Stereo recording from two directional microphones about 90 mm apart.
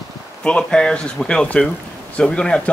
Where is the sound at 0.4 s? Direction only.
10° left (ahead or behind).